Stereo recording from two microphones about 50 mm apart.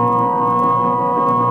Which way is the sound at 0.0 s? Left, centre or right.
Left.